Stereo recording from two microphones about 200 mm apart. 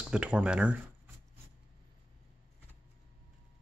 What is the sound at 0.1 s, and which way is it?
Speech, 5° right (ahead or behind).